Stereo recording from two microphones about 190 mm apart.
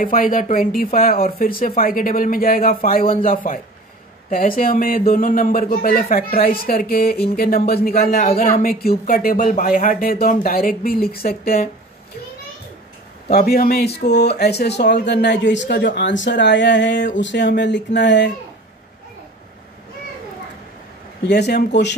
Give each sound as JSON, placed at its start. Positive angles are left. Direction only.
{"t": 0.0, "sound": "speech", "side_deg": 45}
{"t": 13.3, "sound": "speech", "side_deg": 55}
{"t": 21.3, "sound": "speech", "side_deg": 60}